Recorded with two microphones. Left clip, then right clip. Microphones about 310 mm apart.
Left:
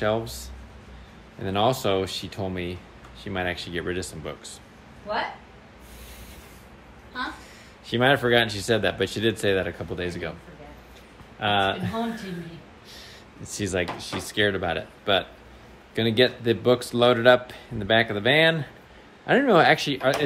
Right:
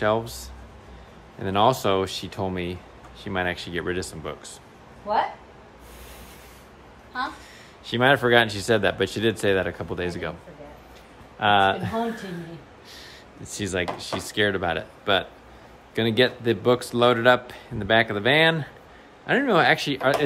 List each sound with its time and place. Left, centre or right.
0.0 s a man's voice: centre
1.4 s a man's voice: centre
5.1 s speech: right
7.8 s speech: centre
11.3 s speech: centre
12.9 s a sound: centre
13.9 s a man's voice: centre